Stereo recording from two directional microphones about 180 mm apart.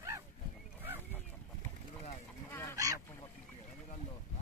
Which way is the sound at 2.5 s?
15° left (ahead or behind).